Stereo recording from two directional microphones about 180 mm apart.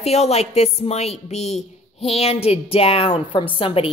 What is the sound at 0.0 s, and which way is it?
A woman's voice, 35° left (ahead or behind).